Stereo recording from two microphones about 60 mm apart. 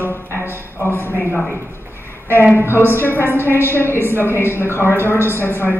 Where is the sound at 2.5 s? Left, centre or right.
Left.